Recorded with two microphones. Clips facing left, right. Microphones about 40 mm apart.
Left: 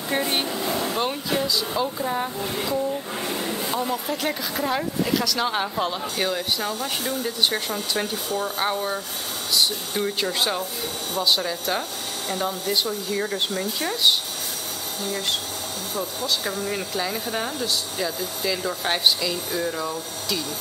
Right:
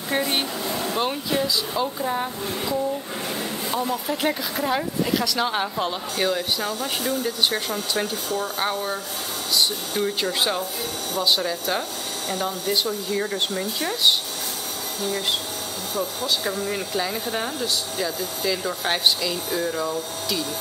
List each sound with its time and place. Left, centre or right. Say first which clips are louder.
0.1 s speech: even; centre
16.0 s speech: right 2 dB; centre